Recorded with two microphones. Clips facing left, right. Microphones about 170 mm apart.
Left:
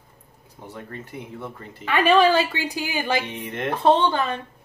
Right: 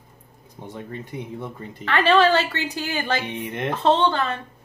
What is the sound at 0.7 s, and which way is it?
Speech, 20° right (ahead or behind).